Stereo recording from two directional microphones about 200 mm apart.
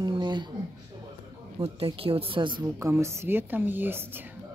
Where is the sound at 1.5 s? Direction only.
25° right (ahead or behind).